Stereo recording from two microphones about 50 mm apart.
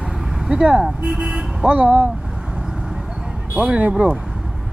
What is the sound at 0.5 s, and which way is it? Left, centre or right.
Speech, centre.